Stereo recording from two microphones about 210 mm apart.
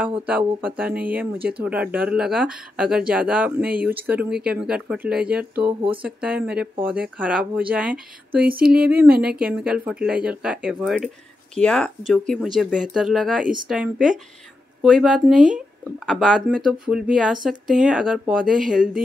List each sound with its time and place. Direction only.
0.6 s speech: 5° right (ahead or behind)
8.3 s a sound: 45° right (ahead or behind)
8.7 s speech: 10° right (ahead or behind)